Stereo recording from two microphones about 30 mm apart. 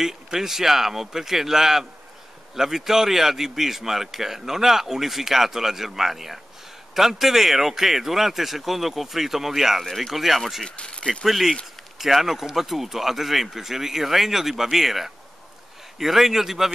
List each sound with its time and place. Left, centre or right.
0.0 s a man's voice: centre
9.8 s speech: centre
10.1 s a man's voice: centre
10.8 s speech: left
11.2 s a man's voice: centre